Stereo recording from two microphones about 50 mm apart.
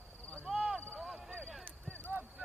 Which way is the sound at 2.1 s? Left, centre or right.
Right.